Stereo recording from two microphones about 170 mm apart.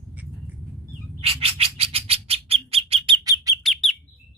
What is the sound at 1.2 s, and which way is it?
Bird, 35° right (ahead or behind).